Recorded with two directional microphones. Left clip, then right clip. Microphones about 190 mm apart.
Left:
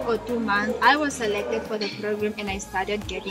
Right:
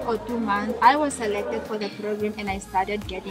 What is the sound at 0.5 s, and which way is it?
Speech, 20° right (ahead or behind).